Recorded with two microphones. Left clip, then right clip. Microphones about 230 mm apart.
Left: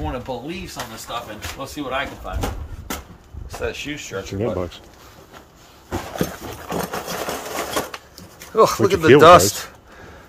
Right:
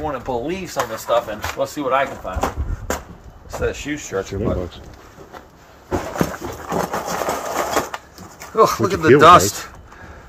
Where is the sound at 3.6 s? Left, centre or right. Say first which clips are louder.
Right 3 dB; centre.